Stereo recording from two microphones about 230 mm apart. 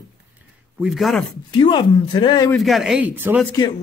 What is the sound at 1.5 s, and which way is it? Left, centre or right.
Speech, left.